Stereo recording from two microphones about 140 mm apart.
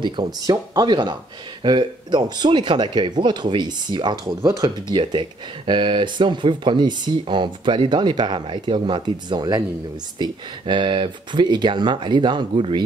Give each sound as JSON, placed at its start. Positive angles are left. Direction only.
{"t": 0.0, "sound": "speech", "side_deg": -30}